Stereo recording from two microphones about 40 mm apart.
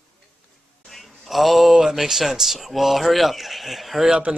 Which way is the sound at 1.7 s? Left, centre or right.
Centre.